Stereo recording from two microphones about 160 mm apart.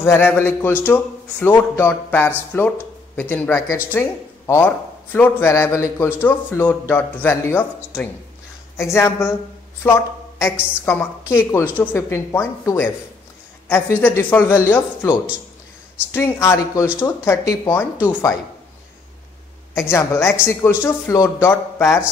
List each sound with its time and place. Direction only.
0.0 s a man's voice: 15° left (ahead or behind)
10.4 s a man's voice: 15° left (ahead or behind)
19.7 s a man's voice: 15° left (ahead or behind)